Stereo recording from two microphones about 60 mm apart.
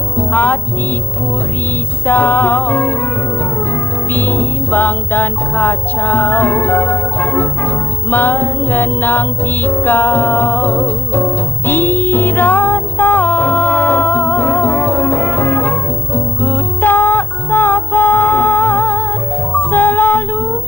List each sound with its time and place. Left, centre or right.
0.3 s music: left
2.0 s music: left
4.1 s music: left